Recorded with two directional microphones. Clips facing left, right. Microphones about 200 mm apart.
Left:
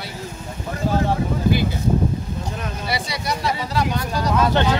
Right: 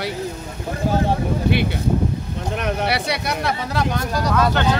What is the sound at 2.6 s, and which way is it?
Speech, 70° right (ahead or behind).